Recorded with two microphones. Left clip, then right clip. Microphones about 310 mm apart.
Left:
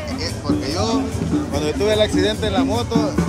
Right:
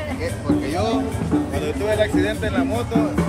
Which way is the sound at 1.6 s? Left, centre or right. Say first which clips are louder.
Left 5 dB; centre.